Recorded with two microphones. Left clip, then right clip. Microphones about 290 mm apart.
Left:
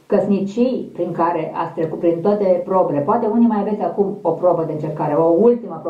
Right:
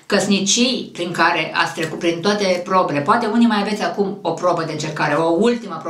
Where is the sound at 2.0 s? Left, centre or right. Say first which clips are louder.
Left 2 dB; right.